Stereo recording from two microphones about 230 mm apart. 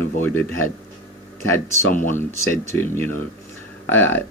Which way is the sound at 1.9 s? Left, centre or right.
Left.